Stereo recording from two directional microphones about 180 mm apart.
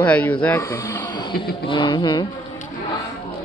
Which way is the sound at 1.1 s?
25° left (ahead or behind).